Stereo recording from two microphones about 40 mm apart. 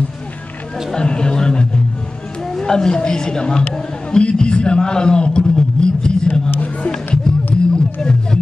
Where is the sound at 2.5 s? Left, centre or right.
Centre.